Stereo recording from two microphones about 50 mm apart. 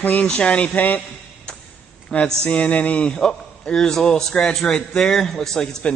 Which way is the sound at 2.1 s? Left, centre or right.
Left.